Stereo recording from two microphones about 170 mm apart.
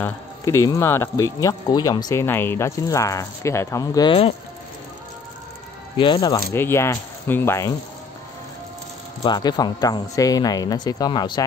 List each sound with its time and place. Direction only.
0.0 s speech: 15° left (ahead or behind)
5.9 s speech: 25° left (ahead or behind)
9.2 s speech: 25° left (ahead or behind)